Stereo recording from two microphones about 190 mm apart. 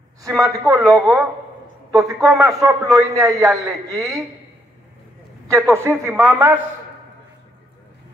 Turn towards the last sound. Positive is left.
turn(degrees=-10)  # may be behind; listen again after turning